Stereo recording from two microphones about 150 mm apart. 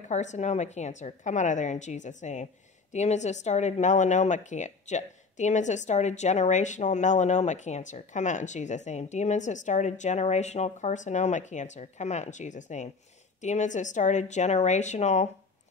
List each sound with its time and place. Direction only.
0.1 s speech: 50° left (ahead or behind)